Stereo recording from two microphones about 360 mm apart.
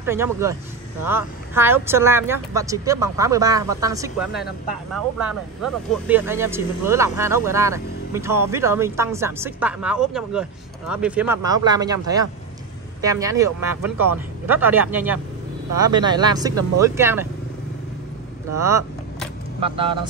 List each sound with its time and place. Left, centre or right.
0.0 s speech: centre
4.3 s speech: left
4.9 s speech: centre
18.5 s vehicle: centre